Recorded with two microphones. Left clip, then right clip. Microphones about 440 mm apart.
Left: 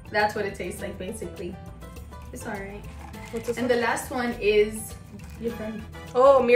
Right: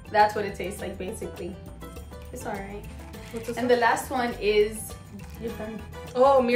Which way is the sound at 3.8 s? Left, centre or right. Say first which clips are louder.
Right 2 dB; centre.